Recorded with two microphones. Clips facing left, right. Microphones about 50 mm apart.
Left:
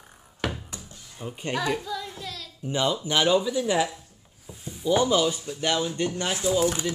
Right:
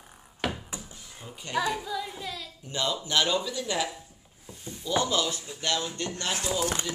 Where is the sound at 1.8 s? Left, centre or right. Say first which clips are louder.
Even; centre.